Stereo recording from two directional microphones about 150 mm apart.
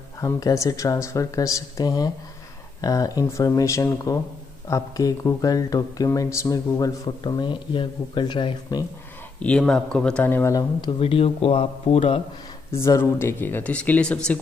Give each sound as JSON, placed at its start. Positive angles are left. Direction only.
{"t": 0.2, "sound": "speech", "side_deg": 20}
{"t": 9.4, "sound": "speech", "side_deg": 5}
{"t": 12.7, "sound": "speech", "side_deg": 20}